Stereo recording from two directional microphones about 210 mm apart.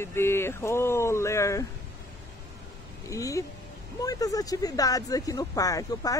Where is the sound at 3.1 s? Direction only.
15° left (ahead or behind).